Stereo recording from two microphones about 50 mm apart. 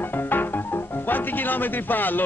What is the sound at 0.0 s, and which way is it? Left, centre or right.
Speech, left.